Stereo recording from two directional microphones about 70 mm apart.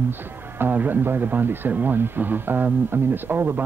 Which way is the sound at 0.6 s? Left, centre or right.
Right.